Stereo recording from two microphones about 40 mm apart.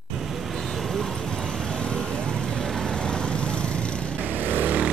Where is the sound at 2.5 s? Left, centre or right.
Centre; by 4.0 s left.